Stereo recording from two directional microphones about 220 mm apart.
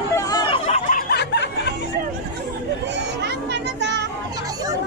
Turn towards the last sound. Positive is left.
turn(degrees=-50)  # may be behind; listen again after turning